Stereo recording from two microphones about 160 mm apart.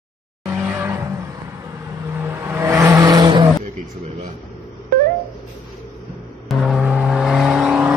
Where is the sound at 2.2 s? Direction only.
15° right (ahead or behind).